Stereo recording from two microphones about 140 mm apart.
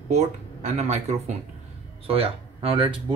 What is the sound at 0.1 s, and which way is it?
Speech, 55° right (ahead or behind).